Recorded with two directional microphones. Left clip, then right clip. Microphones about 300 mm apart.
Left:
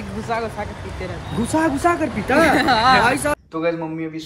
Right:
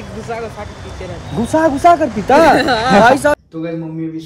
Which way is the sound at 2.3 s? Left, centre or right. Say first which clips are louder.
Right 7 dB; centre.